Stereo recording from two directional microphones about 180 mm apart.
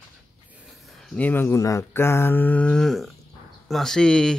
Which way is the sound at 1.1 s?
10° left (ahead or behind).